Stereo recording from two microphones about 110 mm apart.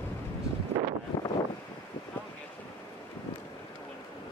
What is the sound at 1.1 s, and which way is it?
Vehicle, 25° left (ahead or behind).